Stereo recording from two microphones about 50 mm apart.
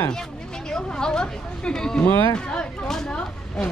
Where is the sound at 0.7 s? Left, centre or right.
Centre.